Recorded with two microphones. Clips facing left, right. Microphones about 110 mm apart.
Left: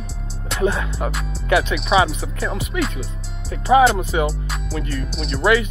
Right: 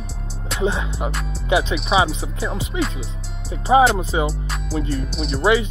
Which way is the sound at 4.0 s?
30° right (ahead or behind).